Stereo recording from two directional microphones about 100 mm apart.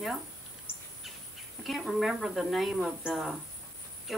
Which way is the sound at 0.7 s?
20° left (ahead or behind).